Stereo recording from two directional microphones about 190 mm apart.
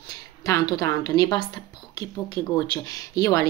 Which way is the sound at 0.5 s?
20° left (ahead or behind).